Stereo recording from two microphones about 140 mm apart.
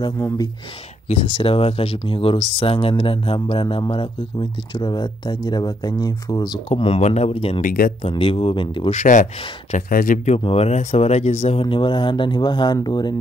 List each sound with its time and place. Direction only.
1.0 s speech: 45° left (ahead or behind); by 6.6 s 30° left (ahead or behind)
6.7 s speech: 45° left (ahead or behind)
7.6 s speech: 90° left
8.1 s speech: 40° left (ahead or behind)
8.9 s speech: 65° left (ahead or behind)
10.3 s speech: 45° left (ahead or behind)
11.6 s speech: 35° left (ahead or behind)